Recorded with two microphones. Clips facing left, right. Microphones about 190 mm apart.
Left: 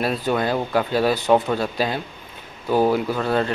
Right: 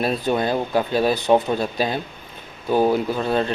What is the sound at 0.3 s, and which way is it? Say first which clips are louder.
Speech: even; 20° right (ahead or behind).